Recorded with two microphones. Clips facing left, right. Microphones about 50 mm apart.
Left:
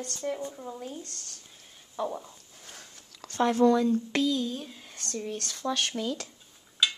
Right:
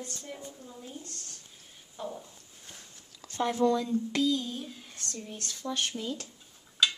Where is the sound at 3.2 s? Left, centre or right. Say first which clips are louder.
Left 4 dB; left.